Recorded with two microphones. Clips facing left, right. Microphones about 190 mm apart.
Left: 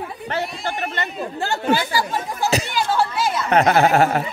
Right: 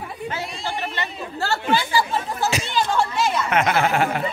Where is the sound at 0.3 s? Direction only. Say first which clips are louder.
Left 5 dB; 55° left (ahead or behind).